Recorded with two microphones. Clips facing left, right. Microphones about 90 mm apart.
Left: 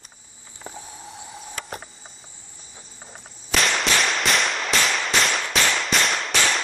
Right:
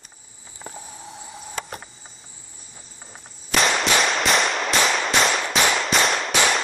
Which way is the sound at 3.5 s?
Centre (ahead or behind).